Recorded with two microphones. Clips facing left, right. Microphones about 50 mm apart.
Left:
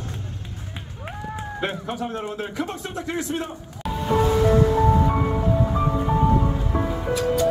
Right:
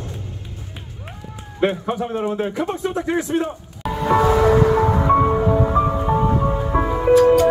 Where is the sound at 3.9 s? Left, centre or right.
Right.